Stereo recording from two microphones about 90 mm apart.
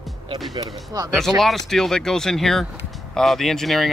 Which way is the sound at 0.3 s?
45° right (ahead or behind).